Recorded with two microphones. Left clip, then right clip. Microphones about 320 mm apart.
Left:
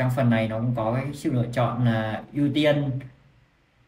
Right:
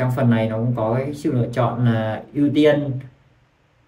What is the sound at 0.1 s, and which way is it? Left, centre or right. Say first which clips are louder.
Speech: right 3 dB; centre.